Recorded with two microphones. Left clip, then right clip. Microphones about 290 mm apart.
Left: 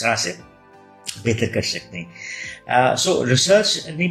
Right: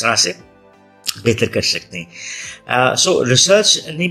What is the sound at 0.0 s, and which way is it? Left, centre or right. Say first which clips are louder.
Speech: right 5 dB; right.